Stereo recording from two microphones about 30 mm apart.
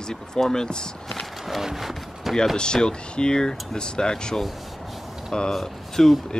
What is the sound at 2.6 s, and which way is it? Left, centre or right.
Speech, left.